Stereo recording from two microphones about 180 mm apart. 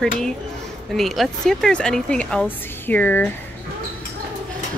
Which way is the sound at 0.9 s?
Centre (ahead or behind).